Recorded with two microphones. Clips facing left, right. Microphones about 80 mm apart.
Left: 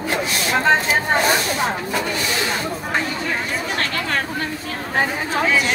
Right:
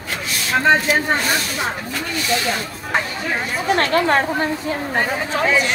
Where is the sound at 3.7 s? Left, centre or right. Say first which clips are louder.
Right 9 dB; right.